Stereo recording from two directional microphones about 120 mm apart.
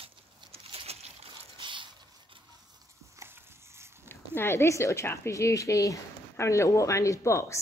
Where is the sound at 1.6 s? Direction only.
45° right (ahead or behind).